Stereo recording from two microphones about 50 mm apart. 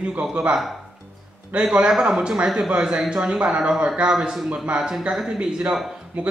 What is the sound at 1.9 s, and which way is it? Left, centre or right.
Speech, centre.